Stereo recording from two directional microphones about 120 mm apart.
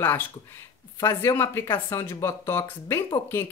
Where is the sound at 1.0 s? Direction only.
25° left (ahead or behind).